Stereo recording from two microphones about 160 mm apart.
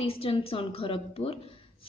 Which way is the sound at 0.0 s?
35° left (ahead or behind).